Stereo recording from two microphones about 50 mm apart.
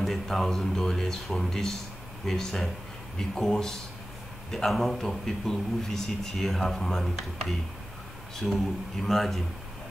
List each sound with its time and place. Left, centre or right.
0.0 s a man's voice: centre